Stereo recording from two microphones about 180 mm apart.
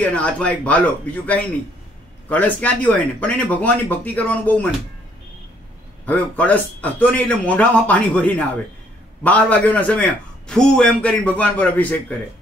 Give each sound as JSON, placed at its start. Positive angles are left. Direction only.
{"t": 0.0, "sound": "a man's voice", "side_deg": 5}
{"t": 6.0, "sound": "a man's voice", "side_deg": 10}